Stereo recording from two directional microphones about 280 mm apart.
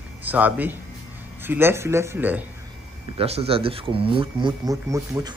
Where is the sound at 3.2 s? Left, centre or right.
Right.